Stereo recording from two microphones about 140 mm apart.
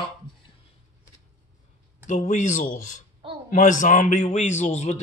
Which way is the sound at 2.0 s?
60° left (ahead or behind).